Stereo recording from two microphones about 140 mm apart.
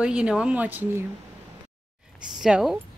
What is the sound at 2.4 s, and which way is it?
Speech, 5° right (ahead or behind).